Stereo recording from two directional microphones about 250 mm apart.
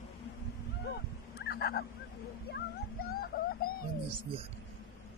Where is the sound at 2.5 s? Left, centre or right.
Left.